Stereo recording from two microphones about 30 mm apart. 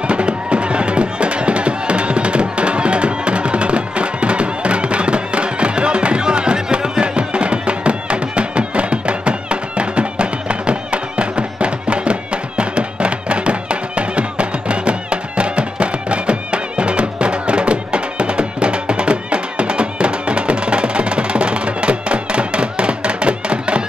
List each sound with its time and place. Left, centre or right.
0.0 s music: right